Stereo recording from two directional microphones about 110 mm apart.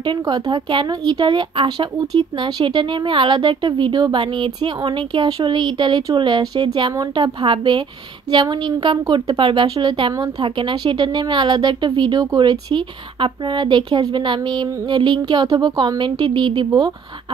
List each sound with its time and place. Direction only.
0.0 s speech: 40° right (ahead or behind)